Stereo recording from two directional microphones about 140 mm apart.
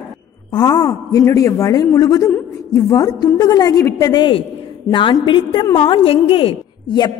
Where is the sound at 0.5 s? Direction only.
30° left (ahead or behind).